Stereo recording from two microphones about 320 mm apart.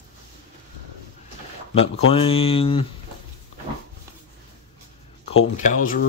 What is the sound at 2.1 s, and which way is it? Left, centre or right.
Speech, centre.